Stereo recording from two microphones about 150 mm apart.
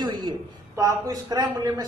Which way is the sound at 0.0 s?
25° right (ahead or behind).